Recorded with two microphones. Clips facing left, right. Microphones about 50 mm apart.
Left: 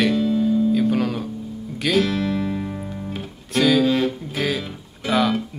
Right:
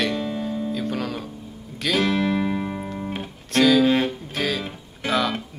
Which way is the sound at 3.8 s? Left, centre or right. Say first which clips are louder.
Even; right.